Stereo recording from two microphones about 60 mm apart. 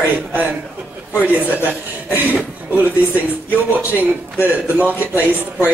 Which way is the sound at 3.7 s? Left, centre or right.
Right.